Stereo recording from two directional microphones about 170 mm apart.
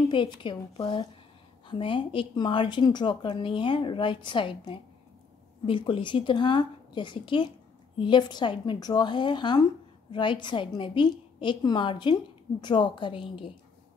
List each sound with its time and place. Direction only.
0.1 s a woman's voice: 30° left (ahead or behind)